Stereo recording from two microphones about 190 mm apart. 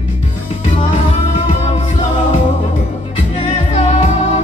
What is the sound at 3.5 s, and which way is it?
Music, 35° left (ahead or behind).